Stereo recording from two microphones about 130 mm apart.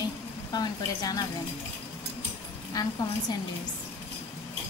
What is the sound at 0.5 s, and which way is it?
Speech, 30° left (ahead or behind).